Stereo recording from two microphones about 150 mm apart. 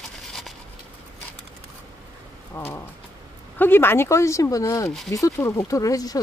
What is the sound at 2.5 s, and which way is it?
Speech, 15° left (ahead or behind).